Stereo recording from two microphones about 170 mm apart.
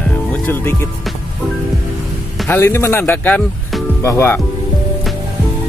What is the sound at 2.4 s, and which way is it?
Speech, 15° left (ahead or behind).